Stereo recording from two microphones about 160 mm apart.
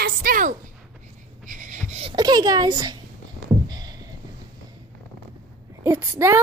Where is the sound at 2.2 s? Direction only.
25° right (ahead or behind).